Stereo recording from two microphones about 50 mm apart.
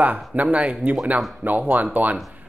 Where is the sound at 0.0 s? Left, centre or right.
Right.